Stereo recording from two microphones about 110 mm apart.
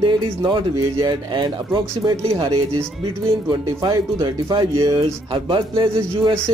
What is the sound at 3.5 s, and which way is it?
Speech, 40° right (ahead or behind).